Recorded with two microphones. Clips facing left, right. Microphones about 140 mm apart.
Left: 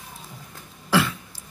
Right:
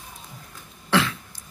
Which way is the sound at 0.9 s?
5° left (ahead or behind).